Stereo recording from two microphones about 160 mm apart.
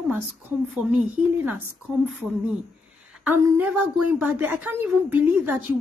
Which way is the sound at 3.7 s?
Centre (ahead or behind).